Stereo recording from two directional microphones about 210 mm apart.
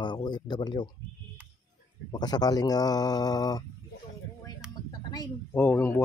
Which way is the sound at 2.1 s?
20° left (ahead or behind).